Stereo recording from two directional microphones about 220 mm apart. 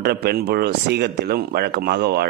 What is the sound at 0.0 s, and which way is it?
Speech, 45° right (ahead or behind).